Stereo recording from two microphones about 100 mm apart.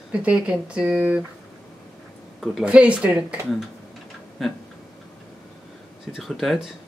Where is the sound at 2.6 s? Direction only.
10° right (ahead or behind).